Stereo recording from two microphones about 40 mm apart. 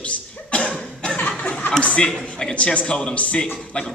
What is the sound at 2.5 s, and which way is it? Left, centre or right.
A man's voice, left.